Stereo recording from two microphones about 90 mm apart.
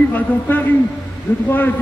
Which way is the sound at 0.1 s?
20° left (ahead or behind).